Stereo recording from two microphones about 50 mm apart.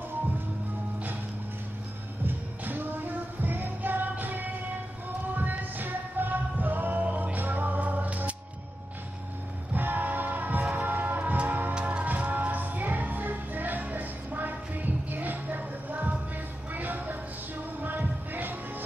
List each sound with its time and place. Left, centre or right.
2.2 s music: right
9.8 s music: right
16.7 s a sound: right
17.8 s music: right